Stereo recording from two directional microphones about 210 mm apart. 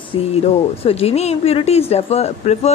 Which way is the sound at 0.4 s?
30° left (ahead or behind).